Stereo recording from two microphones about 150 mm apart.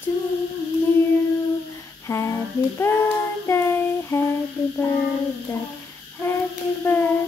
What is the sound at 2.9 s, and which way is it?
Speech, 15° left (ahead or behind).